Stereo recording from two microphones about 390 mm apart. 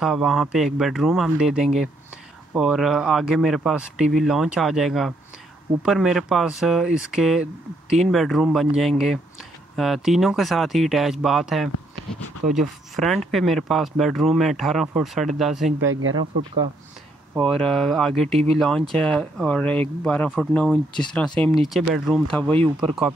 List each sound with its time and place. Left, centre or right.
0.0 s speech: centre
15.9 s speech: right
17.3 s speech: centre
22.6 s speech: centre